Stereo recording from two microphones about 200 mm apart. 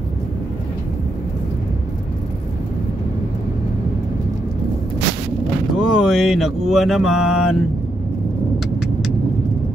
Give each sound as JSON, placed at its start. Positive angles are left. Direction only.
{"t": 5.8, "sound": "mantra", "side_deg": 0}